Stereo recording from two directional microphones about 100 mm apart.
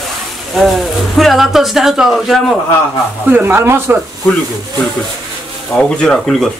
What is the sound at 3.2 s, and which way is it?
Speech, 20° right (ahead or behind).